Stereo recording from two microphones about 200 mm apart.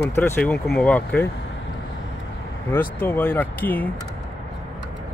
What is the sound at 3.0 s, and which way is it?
Speech, 10° left (ahead or behind).